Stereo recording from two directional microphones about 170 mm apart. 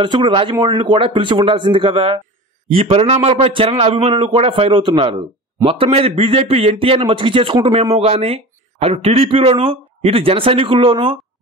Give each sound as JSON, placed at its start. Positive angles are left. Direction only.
{"t": 0.0, "sound": "a man's voice", "side_deg": -30}